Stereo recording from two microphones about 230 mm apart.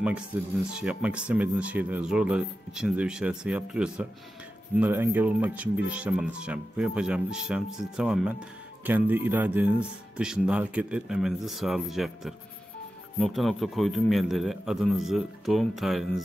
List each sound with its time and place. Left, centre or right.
0.0 s speech: centre